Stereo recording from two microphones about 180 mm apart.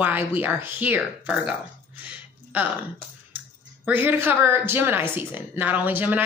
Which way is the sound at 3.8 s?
10° right (ahead or behind).